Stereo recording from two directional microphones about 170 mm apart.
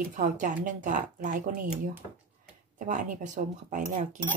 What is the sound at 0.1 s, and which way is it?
Speech, 45° right (ahead or behind).